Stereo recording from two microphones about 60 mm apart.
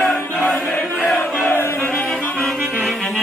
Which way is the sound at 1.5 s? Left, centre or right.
Left.